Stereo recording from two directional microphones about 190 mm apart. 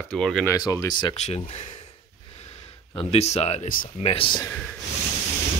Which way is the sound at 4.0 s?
30° left (ahead or behind).